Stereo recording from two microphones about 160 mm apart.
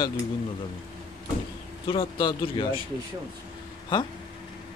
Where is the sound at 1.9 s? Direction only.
30° left (ahead or behind).